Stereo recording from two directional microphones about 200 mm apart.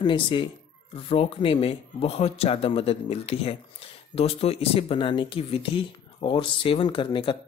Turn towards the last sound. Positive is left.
turn(degrees=25)  # may be behind; listen again after turning